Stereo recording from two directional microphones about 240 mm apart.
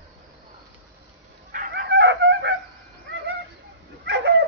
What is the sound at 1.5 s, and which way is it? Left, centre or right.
Chicken, right.